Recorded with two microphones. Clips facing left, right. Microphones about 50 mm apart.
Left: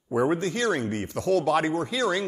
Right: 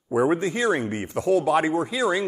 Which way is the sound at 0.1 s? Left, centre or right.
Centre.